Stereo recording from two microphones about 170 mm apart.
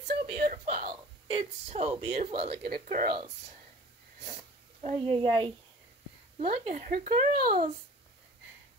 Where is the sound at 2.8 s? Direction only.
50° right (ahead or behind).